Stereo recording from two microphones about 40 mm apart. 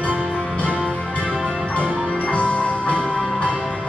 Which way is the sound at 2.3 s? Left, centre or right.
Left.